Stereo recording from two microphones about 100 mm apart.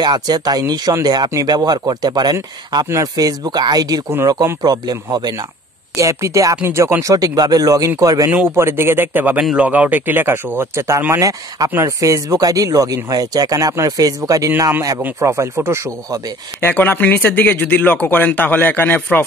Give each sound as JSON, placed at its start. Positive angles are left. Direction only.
{"t": 0.0, "sound": "speech", "side_deg": -45}
{"t": 5.9, "sound": "speech", "side_deg": -30}
{"t": 8.5, "sound": "speech", "side_deg": -25}
{"t": 16.6, "sound": "speech", "side_deg": 20}